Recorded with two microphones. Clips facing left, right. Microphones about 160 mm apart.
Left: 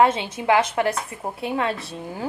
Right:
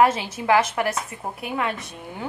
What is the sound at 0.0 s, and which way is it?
A woman's voice, 25° left (ahead or behind).